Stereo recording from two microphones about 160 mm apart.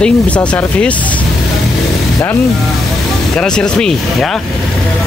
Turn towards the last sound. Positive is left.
turn(degrees=5)  # may be behind; listen again after turning